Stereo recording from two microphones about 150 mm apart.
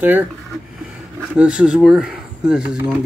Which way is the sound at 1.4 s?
5° right (ahead or behind).